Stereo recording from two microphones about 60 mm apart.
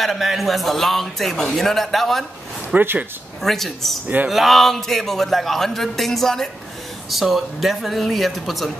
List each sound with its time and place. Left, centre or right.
0.0 s a man's voice: centre
2.8 s speech: right
3.4 s a man's voice: centre